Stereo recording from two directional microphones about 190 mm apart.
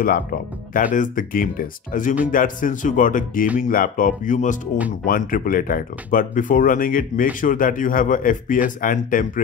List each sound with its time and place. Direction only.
0.0 s speech: 50° left (ahead or behind)